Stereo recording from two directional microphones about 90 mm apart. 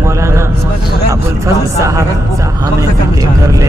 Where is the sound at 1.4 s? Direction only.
35° right (ahead or behind).